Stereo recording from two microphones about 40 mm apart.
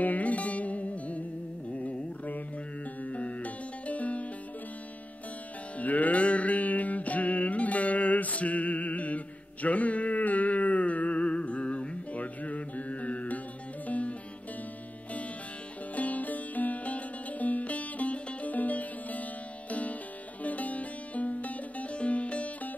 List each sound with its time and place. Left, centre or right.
0.0 s music: left
1.7 s carnatic music: left
3.0 s music: left
5.8 s music: left
15.9 s music: left